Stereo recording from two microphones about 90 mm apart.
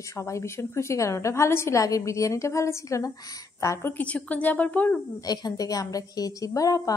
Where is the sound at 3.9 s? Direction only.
15° left (ahead or behind).